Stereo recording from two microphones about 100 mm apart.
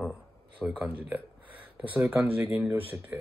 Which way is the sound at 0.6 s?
10° right (ahead or behind).